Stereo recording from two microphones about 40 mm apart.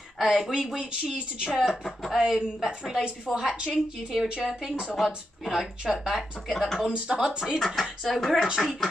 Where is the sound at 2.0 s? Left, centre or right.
Centre.